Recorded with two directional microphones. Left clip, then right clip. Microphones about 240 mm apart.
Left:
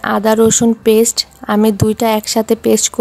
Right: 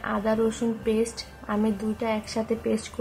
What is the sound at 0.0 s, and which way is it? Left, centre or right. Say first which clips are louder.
A woman's voice: left 14 dB; left.